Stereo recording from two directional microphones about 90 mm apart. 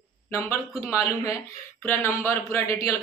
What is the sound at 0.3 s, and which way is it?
Speech, 30° left (ahead or behind).